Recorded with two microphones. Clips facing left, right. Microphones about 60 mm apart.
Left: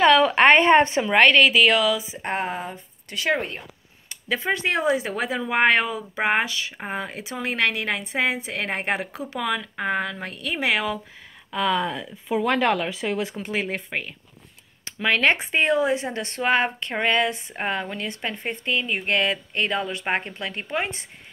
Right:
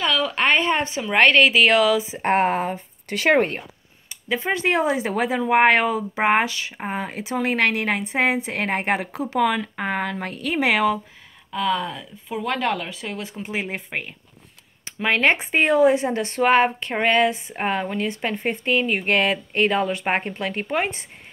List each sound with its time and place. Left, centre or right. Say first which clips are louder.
0.0 s a woman's voice: left 6 dB; left
1.1 s a woman's voice: right 1 dB; right
4.3 s a woman's voice: right 2 dB; centre; by 11.0 s right
11.5 s speech: even; centre
13.4 s speech: left 1 dB; right